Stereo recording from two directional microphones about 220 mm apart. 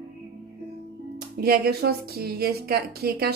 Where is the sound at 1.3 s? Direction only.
45° right (ahead or behind).